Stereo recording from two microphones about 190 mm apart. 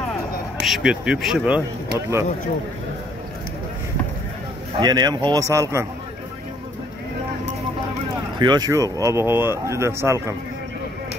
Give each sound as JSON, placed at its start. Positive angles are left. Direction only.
{"t": 0.6, "sound": "speech", "side_deg": 0}
{"t": 2.0, "sound": "speech", "side_deg": -15}
{"t": 4.7, "sound": "a man's voice", "side_deg": -20}
{"t": 8.4, "sound": "speech", "side_deg": -20}